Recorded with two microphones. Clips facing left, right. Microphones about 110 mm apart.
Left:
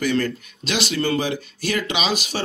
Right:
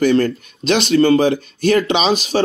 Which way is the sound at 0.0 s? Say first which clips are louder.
Right 7 dB; 40° right (ahead or behind).